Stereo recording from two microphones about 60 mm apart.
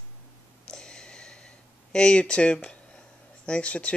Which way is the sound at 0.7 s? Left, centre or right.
Centre.